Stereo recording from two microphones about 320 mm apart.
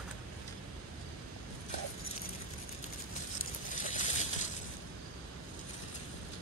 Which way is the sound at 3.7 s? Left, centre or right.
Left.